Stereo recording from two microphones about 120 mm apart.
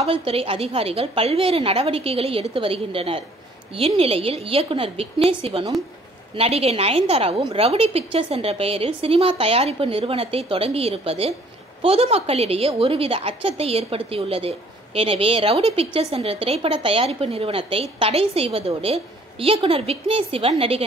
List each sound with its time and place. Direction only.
0.0 s a woman's voice: 50° right (ahead or behind)